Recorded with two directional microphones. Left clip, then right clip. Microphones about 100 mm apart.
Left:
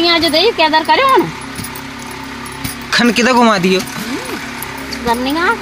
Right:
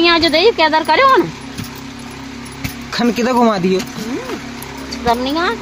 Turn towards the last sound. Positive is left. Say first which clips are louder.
# left 1 dB
turn(degrees=35)  # may be behind; listen again after turning